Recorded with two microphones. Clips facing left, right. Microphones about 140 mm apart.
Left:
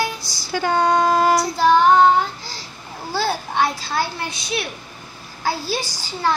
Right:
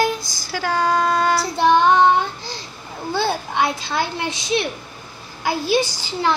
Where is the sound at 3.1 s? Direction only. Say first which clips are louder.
Even; 20° right (ahead or behind).